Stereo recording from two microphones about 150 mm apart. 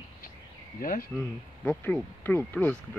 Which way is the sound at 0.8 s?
70° left (ahead or behind).